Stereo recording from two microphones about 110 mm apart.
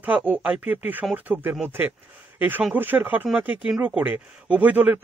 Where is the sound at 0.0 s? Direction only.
15° right (ahead or behind).